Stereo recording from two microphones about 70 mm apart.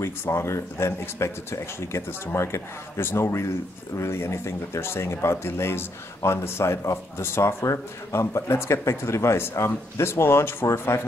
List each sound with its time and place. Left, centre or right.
0.0 s speech: left